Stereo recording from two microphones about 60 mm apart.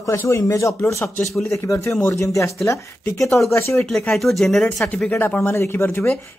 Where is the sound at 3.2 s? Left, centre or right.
Centre.